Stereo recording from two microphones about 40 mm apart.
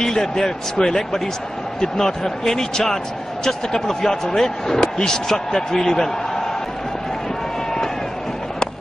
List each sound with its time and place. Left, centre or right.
0.0 s speech: centre